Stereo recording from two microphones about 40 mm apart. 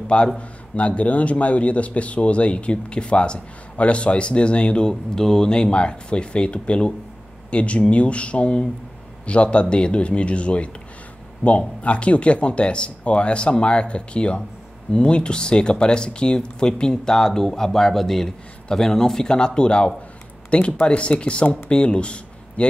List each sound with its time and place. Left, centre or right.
0.4 s speech: left
5.1 s speech: centre; by 22.7 s left